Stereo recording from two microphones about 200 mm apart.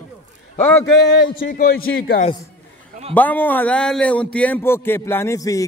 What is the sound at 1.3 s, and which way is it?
Speech, 45° left (ahead or behind).